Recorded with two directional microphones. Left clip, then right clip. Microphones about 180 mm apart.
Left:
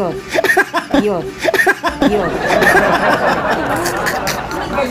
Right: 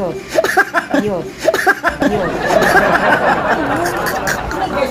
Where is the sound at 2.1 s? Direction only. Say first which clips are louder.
Even; centre (ahead or behind).